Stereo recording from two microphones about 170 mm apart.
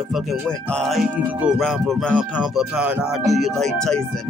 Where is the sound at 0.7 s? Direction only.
Centre (ahead or behind).